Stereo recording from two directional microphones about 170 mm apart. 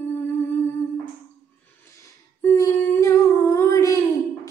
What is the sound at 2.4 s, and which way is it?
Humming, 15° left (ahead or behind).